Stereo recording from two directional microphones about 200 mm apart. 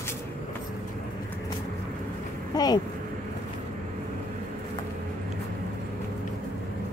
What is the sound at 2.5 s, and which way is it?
Speech, 20° left (ahead or behind).